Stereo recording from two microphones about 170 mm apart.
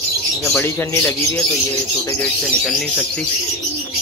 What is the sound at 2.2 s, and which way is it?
Speech, 5° left (ahead or behind).